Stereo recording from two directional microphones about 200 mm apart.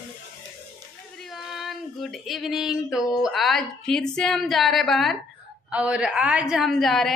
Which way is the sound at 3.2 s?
Centre (ahead or behind).